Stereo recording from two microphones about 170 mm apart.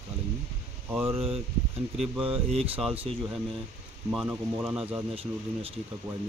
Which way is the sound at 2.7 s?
10° right (ahead or behind).